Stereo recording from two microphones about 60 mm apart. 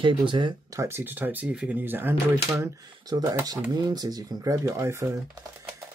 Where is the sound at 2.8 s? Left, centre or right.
Right.